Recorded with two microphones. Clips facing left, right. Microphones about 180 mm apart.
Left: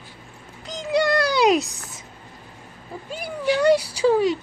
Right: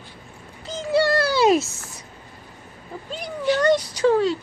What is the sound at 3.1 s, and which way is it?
Cat, 10° left (ahead or behind).